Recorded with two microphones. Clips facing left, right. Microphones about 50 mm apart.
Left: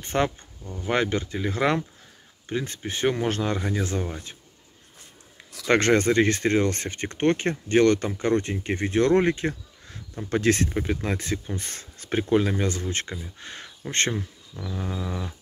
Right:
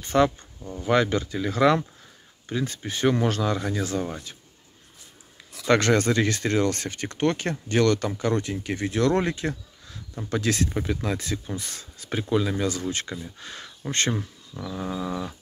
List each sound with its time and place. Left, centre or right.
0.0 s speech: left
0.6 s speech: centre
0.8 s speech: left
5.7 s speech: left
13.1 s speech: centre
13.4 s speech: left
14.9 s a sound: centre